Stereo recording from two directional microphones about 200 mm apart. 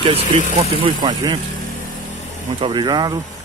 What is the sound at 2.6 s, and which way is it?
Speech, 20° right (ahead or behind).